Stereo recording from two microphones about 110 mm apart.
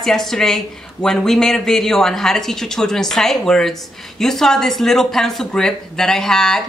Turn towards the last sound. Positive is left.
turn(degrees=5)  # may be behind; listen again after turning